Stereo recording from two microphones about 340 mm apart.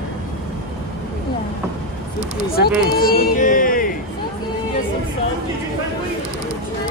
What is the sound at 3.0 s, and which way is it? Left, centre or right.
Music, left.